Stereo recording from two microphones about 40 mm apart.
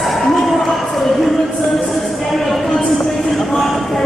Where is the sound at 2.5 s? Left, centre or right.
Centre.